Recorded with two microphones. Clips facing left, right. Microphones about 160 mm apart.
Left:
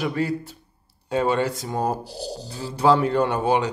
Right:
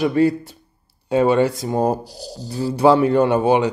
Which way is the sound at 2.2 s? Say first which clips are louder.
Left 2 dB; 65° left (ahead or behind).